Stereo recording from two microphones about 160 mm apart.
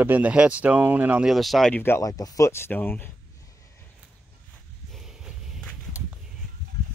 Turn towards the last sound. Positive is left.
turn(degrees=0)  # may be behind; listen again after turning